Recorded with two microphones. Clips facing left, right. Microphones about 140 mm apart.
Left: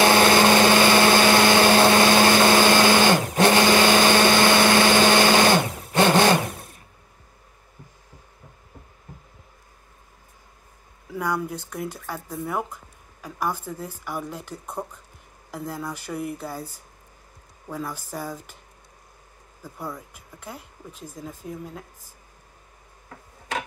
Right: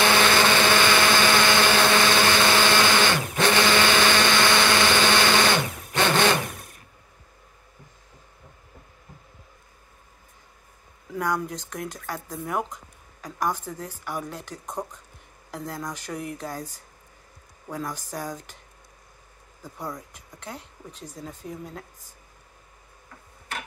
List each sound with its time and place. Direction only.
0.0 s blender: 40° left (ahead or behind)
3.7 s a sound: 40° left (ahead or behind)
11.1 s speech: 10° left (ahead or behind)
17.6 s speech: 5° left (ahead or behind)
19.6 s speech: 5° left (ahead or behind)